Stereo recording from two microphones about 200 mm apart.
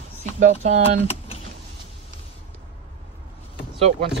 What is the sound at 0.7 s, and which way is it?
Speech, 35° right (ahead or behind).